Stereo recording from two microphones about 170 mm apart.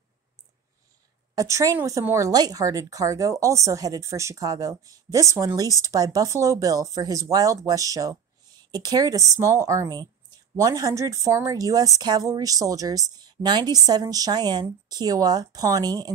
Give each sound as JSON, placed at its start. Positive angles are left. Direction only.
{"t": 1.3, "sound": "speech", "side_deg": -20}